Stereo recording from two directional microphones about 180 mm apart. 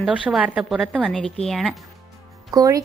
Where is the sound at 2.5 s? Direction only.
20° right (ahead or behind).